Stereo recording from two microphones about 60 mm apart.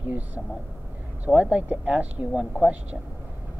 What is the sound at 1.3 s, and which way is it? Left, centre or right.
Speech, right.